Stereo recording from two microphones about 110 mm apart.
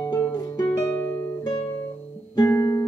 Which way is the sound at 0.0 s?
35° left (ahead or behind).